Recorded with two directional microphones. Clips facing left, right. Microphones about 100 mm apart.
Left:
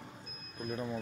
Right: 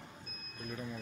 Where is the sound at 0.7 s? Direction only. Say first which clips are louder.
Left 5 dB; 30° left (ahead or behind).